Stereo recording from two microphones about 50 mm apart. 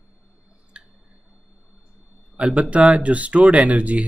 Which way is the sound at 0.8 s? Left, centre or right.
Centre.